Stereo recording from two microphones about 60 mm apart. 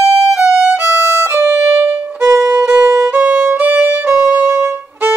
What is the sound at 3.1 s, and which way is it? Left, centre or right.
Violin, right.